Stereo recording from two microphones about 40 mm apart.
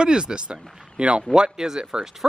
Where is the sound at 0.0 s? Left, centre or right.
Right.